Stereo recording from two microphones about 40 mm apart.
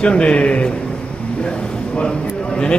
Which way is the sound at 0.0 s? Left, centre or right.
Left.